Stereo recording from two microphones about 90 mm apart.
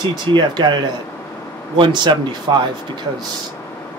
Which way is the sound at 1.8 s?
60° right (ahead or behind).